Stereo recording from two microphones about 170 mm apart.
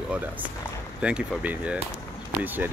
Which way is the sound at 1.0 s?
10° right (ahead or behind).